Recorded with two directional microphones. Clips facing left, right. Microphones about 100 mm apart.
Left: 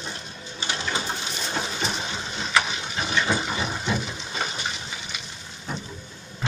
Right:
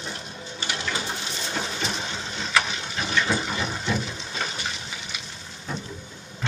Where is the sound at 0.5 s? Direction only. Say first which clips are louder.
Left 1 dB; 25° left (ahead or behind).